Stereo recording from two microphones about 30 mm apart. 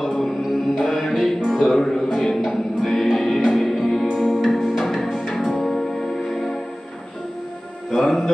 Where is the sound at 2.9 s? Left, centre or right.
Centre.